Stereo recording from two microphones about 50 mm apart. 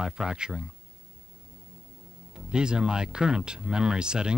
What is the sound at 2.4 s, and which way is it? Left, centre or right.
Speech, centre.